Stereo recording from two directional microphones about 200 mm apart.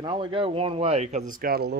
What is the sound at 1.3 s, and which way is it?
Speech, 45° right (ahead or behind).